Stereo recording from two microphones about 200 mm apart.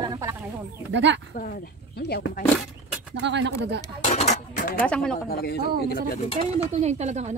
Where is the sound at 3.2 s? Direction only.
60° right (ahead or behind).